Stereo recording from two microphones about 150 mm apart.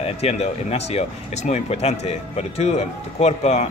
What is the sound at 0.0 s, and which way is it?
Speech, 45° left (ahead or behind).